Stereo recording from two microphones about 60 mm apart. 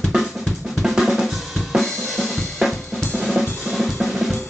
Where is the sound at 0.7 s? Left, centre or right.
Centre.